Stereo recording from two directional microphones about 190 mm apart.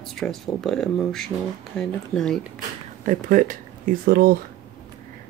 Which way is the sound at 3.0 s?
40° right (ahead or behind).